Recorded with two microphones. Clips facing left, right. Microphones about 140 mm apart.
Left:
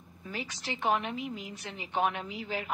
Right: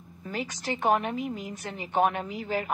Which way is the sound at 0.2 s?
45° right (ahead or behind).